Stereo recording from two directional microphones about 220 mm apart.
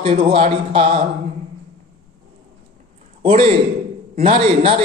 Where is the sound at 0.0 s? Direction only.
30° right (ahead or behind).